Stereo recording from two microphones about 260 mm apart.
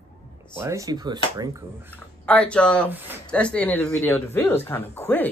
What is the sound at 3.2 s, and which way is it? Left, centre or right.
Speech, centre.